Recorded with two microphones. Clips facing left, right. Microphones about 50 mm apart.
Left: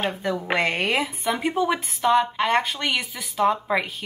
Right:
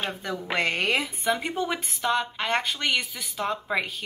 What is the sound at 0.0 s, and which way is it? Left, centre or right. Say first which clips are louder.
Speech: left 5 dB; left.